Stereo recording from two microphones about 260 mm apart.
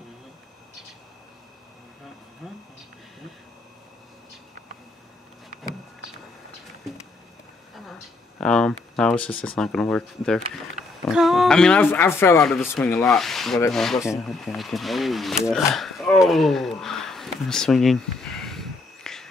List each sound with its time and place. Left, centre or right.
2.4 s speech: centre
8.4 s speech: centre